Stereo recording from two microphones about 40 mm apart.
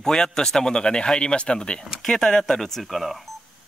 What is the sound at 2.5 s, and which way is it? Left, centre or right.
Speech, centre.